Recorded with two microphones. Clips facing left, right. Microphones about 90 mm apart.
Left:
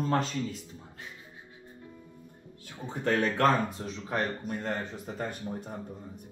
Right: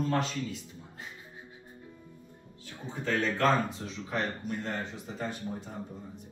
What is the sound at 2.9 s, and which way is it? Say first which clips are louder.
Speech: left 3 dB; 60° left (ahead or behind).